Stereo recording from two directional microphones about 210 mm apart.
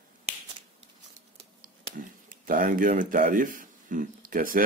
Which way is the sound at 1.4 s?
35° right (ahead or behind).